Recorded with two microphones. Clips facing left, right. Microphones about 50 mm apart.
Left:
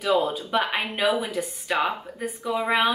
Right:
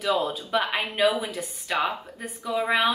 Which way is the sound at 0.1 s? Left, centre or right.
Centre.